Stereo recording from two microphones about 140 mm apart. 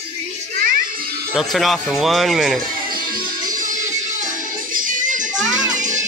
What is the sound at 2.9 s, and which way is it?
Music, 90° right.